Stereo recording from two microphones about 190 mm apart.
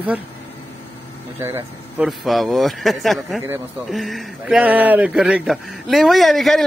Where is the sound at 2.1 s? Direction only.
Centre (ahead or behind).